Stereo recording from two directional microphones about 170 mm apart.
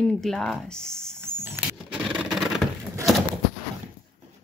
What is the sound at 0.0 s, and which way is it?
Speech, 5° left (ahead or behind).